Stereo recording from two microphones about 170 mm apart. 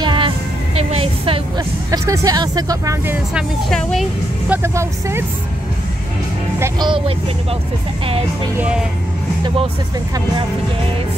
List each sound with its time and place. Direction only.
0.0 s music: 30° right (ahead or behind)
0.7 s a sound: 35° right (ahead or behind)
1.9 s speech: 20° right (ahead or behind)
3.3 s a woman's voice: centre (ahead or behind)
4.5 s speech: 15° right (ahead or behind)
6.6 s speech: 25° right (ahead or behind)
8.5 s speech: 5° right (ahead or behind)